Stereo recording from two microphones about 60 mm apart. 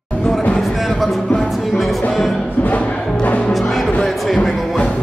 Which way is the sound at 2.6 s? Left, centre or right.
Left.